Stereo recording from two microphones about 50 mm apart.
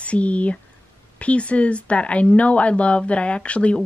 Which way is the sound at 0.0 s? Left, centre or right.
Left.